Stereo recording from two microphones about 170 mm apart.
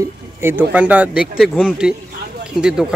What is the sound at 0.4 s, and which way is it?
Speech, 10° right (ahead or behind).